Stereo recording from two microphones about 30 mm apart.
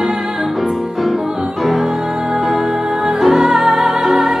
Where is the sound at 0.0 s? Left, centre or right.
Centre.